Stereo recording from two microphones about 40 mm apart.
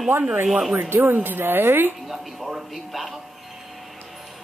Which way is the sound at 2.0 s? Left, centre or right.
Centre.